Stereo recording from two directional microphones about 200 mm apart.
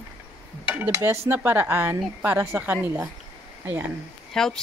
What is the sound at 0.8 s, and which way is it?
Speech, 15° right (ahead or behind).